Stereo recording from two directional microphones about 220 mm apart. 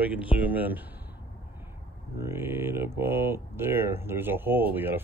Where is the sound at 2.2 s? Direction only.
10° right (ahead or behind).